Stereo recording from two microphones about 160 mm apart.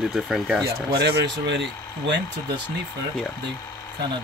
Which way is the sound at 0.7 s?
85° right.